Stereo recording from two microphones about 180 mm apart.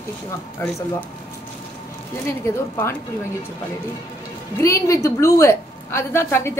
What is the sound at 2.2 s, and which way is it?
Speech, 15° left (ahead or behind).